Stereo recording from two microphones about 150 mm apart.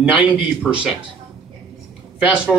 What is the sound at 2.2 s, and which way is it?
Speech, 5° right (ahead or behind).